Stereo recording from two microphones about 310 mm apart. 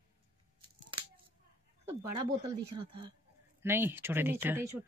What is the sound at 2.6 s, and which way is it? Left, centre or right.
Speech, right.